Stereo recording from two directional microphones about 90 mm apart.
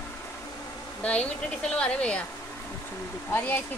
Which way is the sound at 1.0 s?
15° left (ahead or behind).